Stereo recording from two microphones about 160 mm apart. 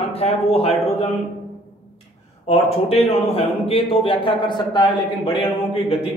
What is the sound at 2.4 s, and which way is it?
A man's voice, 40° left (ahead or behind).